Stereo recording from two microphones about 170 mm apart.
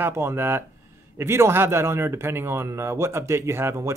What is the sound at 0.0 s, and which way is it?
Speech, 15° right (ahead or behind).